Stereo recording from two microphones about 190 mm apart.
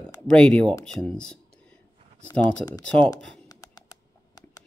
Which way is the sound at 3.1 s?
20° left (ahead or behind).